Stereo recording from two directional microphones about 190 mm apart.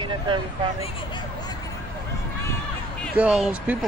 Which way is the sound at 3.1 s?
5° right (ahead or behind).